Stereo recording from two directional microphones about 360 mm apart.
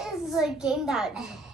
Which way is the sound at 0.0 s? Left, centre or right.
Centre.